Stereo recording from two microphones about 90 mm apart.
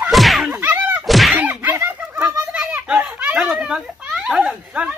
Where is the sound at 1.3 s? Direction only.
20° right (ahead or behind).